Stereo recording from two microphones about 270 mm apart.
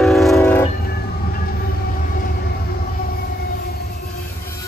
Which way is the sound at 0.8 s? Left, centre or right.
Left.